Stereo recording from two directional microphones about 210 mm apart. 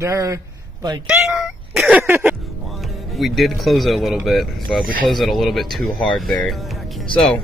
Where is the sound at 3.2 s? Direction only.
Centre (ahead or behind).